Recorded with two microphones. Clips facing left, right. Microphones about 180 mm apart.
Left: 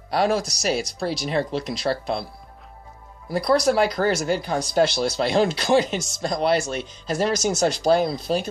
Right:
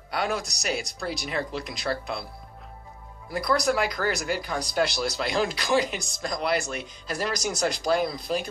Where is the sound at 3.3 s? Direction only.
30° left (ahead or behind).